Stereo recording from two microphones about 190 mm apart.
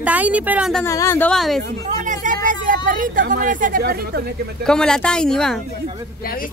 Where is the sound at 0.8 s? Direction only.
15° left (ahead or behind).